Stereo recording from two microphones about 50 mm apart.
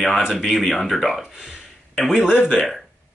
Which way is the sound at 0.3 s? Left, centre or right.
Centre.